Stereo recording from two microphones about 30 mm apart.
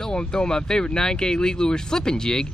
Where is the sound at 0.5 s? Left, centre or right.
Left.